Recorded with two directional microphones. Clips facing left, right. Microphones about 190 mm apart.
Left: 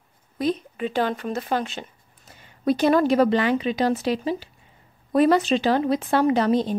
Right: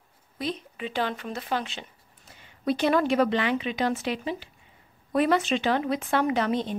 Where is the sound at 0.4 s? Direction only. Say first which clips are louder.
Left 7 dB; 45° left (ahead or behind).